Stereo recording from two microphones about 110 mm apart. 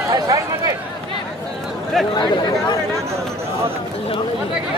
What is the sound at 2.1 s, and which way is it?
Speech, 45° left (ahead or behind).